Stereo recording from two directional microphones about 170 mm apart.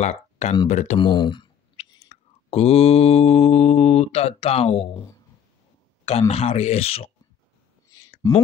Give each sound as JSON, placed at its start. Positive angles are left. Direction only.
{"t": 0.0, "sound": "speech", "side_deg": 40}
{"t": 0.9, "sound": "speech", "side_deg": 25}
{"t": 2.1, "sound": "clicking", "side_deg": 35}
{"t": 2.5, "sound": "speech", "side_deg": 35}
{"t": 4.9, "sound": "speech", "side_deg": 20}
{"t": 6.0, "sound": "speech", "side_deg": 35}
{"t": 7.9, "sound": "a sound", "side_deg": 20}